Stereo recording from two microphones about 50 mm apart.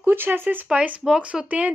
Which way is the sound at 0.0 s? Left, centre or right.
Right.